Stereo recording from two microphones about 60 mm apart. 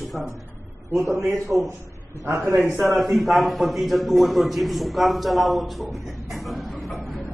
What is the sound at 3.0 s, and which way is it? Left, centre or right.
A man's voice, centre.